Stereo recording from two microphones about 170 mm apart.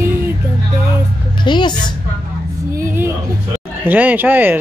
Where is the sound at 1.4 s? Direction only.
25° left (ahead or behind).